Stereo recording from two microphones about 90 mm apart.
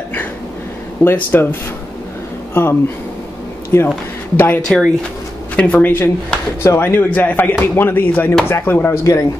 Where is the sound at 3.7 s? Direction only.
25° left (ahead or behind).